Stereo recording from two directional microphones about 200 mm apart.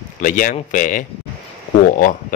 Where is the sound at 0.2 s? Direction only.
40° left (ahead or behind).